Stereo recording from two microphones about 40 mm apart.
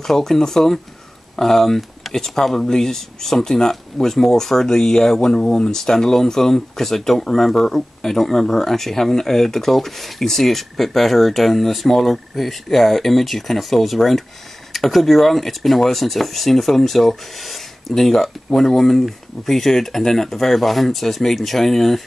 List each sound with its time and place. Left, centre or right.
0.0 s speech: centre